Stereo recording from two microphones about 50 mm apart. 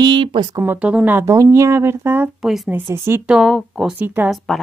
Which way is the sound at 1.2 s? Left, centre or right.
Right.